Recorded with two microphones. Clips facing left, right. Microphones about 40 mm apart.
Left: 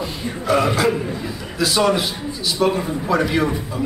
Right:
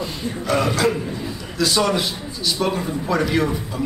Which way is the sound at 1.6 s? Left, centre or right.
Centre.